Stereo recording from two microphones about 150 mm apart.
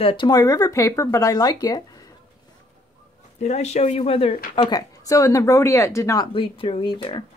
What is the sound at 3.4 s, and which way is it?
Speech, 45° left (ahead or behind).